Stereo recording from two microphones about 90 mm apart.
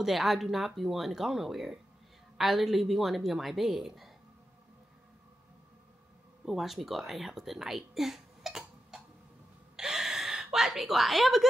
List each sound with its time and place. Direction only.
0.0 s a woman's voice: centre (ahead or behind)
6.4 s a woman's voice: centre (ahead or behind)
9.8 s a sound: 5° right (ahead or behind)